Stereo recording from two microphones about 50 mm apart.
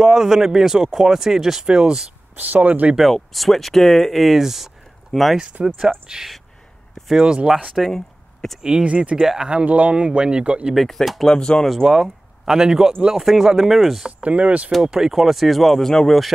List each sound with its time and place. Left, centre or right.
0.0 s speech: centre
2.3 s speech: right
3.0 s speech: centre
5.4 s speech: right
7.7 s speech: centre
8.8 s speech: right
9.2 s speech: centre
9.5 s speech: right
10.7 s speech: centre
11.2 s speech: centre
11.8 s speech: centre
14.0 s speech: right
14.7 s speech: centre